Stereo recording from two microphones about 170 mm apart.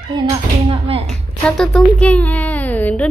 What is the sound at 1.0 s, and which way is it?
Speech, 5° left (ahead or behind).